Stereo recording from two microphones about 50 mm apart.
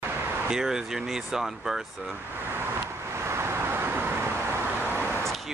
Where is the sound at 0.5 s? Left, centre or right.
Centre.